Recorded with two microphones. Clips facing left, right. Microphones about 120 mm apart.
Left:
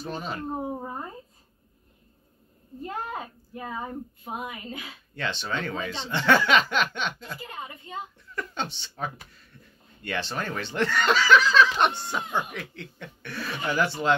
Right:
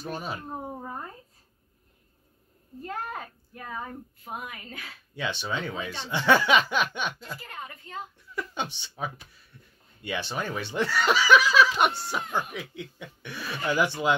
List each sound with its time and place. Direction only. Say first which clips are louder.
0.1 s speech: left 2 dB; 10° right (ahead or behind)
0.5 s speech: left 4 dB; 10° left (ahead or behind)
2.8 s speech: left 2 dB; 10° left (ahead or behind)
5.1 s speech: even; 10° right (ahead or behind)
7.4 s speech: left 2 dB; 15° left (ahead or behind)
8.4 s speech: even; 10° right (ahead or behind)
9.3 s a sound: left 2 dB; 10° right (ahead or behind)
10.0 s speech: left 1 dB; 10° right (ahead or behind)
12.2 s speech: left 1 dB; 15° left (ahead or behind)
12.4 s speech: right 1 dB; 10° right (ahead or behind)